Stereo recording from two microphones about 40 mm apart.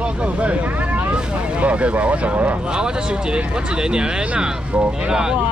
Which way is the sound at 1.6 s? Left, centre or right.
Right.